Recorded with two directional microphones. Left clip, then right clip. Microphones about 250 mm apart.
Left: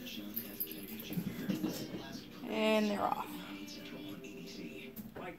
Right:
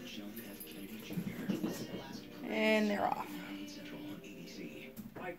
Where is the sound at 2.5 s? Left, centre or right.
Centre.